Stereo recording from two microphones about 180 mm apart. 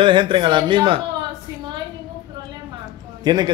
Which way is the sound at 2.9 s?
25° right (ahead or behind).